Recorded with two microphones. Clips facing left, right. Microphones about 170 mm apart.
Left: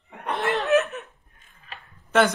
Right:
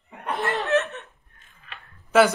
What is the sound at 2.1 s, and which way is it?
Speech, centre (ahead or behind).